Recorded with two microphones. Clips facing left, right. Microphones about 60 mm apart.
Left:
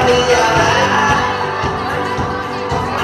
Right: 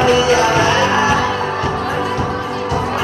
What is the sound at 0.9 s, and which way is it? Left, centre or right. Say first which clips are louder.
Music: left 1 dB; centre.